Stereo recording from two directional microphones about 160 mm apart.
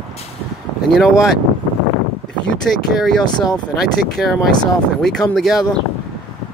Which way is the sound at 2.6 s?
Centre (ahead or behind).